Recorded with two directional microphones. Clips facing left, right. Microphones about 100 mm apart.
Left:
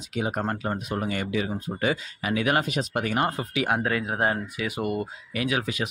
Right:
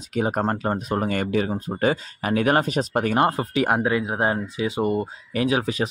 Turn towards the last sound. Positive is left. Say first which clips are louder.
# right 5 dB
turn(degrees=-35)  # may be behind; listen again after turning